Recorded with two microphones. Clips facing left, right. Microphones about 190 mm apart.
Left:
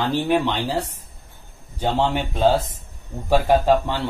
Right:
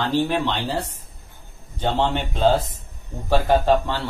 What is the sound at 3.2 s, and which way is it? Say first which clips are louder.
Speech: left 1 dB; 10° left (ahead or behind).